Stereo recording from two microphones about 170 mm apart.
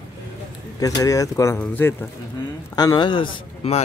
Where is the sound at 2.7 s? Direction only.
25° left (ahead or behind).